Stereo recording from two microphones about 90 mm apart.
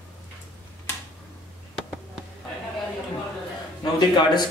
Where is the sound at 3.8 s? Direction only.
50° left (ahead or behind).